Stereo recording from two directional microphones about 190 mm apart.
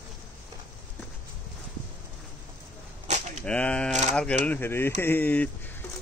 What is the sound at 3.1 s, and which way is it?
Cap gun, 35° right (ahead or behind).